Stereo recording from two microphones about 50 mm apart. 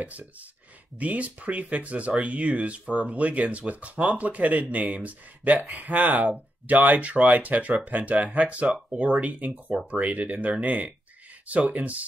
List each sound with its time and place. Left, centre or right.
0.0 s speech: right